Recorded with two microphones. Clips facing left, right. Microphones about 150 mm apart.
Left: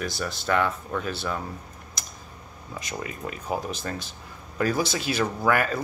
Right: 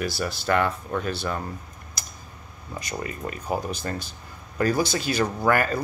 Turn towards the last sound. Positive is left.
turn(degrees=0)  # may be behind; listen again after turning